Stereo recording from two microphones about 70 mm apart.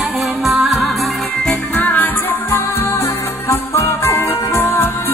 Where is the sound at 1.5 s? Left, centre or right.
Left.